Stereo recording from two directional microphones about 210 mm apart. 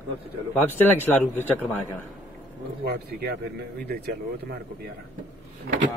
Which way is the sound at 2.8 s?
50° right (ahead or behind).